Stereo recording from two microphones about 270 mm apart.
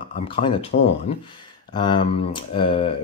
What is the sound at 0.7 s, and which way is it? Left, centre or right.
Speech, left.